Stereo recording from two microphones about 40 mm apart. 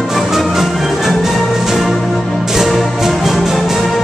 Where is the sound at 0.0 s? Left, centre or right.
Centre.